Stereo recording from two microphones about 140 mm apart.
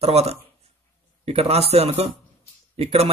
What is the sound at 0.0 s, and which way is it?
Speech, 50° right (ahead or behind).